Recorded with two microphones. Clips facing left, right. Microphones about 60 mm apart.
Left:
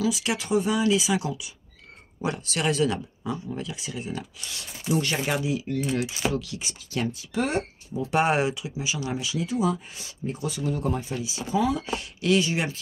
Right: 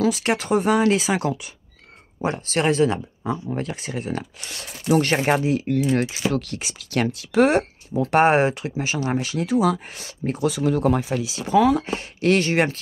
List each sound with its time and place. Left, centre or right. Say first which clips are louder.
0.0 s speech: right 5 dB; right
2.2 s speech: right 5 dB; right
4.6 s speech: right 7 dB; right
6.6 s speech: right 6 dB; right
8.2 s speech: right 6 dB; right
11.9 s speech: right 4 dB; right